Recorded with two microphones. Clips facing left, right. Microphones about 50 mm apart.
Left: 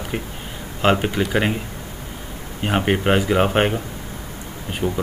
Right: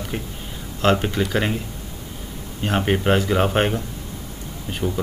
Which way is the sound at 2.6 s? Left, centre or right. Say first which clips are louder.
Left 1 dB; centre.